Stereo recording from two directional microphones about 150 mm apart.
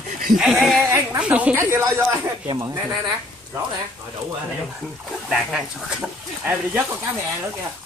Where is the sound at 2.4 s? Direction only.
30° right (ahead or behind).